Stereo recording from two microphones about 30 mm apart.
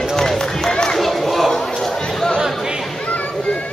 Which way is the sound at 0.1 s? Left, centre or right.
Centre.